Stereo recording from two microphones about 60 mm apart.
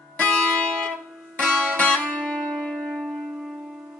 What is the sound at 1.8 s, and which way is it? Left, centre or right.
Music, left.